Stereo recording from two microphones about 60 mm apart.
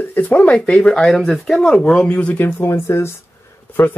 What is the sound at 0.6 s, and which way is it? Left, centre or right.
Speech, centre.